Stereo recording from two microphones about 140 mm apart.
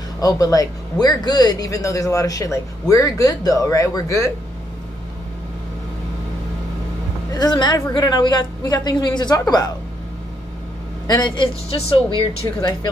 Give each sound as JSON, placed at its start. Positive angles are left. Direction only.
{"t": 0.2, "sound": "speech", "side_deg": 25}
{"t": 7.3, "sound": "speech", "side_deg": 30}
{"t": 11.1, "sound": "a woman's voice", "side_deg": 30}